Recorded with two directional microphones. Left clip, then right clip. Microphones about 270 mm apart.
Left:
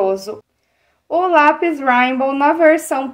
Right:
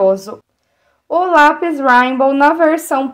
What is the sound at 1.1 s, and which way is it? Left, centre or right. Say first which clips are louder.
Speech: right 2 dB; right.